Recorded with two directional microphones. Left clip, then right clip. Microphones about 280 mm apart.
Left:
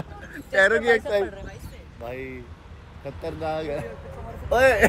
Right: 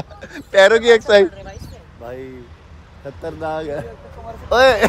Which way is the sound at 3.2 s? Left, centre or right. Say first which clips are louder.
Right 4 dB; centre.